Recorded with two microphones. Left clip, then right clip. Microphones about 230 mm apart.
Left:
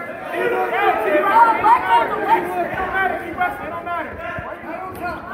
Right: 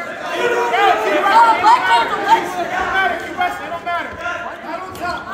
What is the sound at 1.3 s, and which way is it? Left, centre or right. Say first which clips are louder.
Chatter: right 3 dB; right.